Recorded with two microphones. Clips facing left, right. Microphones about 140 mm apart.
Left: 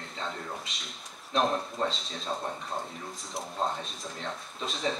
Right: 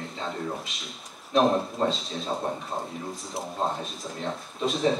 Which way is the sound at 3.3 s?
Centre (ahead or behind).